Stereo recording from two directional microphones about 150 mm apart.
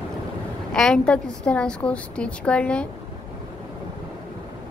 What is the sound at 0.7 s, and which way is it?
A woman's voice, 5° left (ahead or behind).